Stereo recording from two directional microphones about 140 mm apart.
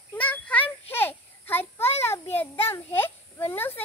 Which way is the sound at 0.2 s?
10° left (ahead or behind).